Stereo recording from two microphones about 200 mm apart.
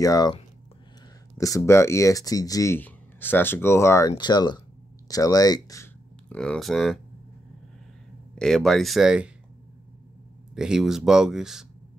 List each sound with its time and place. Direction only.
0.0 s speech: 20° left (ahead or behind)
1.4 s speech: 15° left (ahead or behind)
5.0 s a sound: 15° left (ahead or behind)
6.3 s speech: 5° left (ahead or behind)
8.4 s speech: centre (ahead or behind)
10.5 s speech: 5° right (ahead or behind)